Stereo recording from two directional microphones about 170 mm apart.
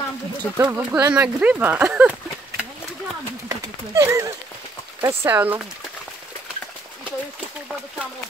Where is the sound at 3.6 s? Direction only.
15° right (ahead or behind).